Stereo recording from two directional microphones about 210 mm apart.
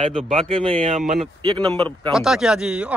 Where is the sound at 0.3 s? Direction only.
25° right (ahead or behind).